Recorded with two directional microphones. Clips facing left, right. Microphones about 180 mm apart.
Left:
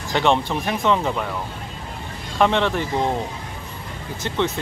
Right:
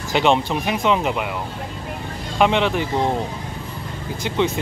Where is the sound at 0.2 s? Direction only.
5° right (ahead or behind).